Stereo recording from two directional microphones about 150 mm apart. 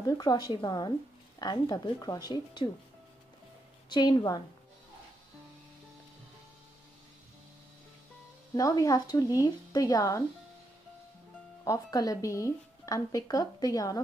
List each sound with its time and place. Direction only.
0.2 s speech: 30° left (ahead or behind)
3.9 s speech: 30° left (ahead or behind)
8.5 s speech: 25° left (ahead or behind)
11.6 s speech: 25° left (ahead or behind)